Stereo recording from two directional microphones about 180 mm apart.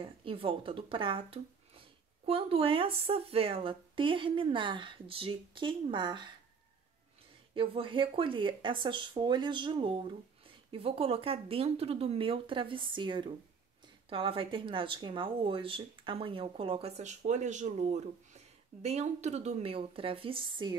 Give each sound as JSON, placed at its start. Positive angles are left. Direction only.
{"t": 0.0, "sound": "speech", "side_deg": -30}
{"t": 7.5, "sound": "speech", "side_deg": -30}